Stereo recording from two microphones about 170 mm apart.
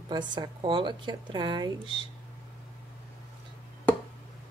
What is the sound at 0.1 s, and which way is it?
Speech, 25° right (ahead or behind).